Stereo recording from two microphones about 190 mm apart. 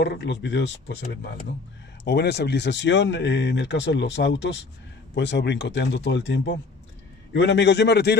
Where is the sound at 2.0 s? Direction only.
60° left (ahead or behind).